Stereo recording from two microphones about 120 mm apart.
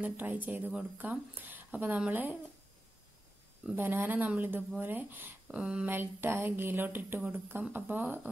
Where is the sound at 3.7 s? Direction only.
15° right (ahead or behind).